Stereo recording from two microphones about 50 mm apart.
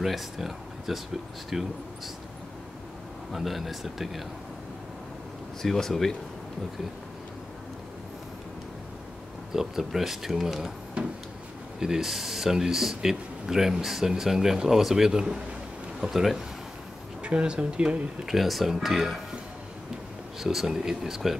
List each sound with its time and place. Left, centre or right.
0.0 s speech: centre
3.3 s speech: centre
5.6 s speech: centre
9.5 s speech: centre
11.8 s speech: centre
17.2 s speech: right
18.2 s speech: centre
20.3 s speech: centre